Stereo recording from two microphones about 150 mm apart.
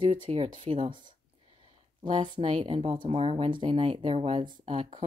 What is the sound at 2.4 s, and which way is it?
Speech, 45° right (ahead or behind).